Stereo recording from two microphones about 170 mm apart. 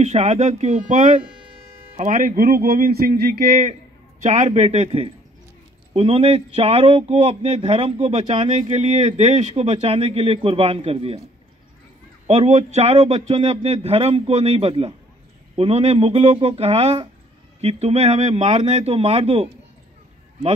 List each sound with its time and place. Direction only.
0.0 s a man's voice: 40° right (ahead or behind); by 3.7 s 60° right (ahead or behind)
4.2 s a man's voice: 45° right (ahead or behind)
12.3 s a man's voice: 40° right (ahead or behind)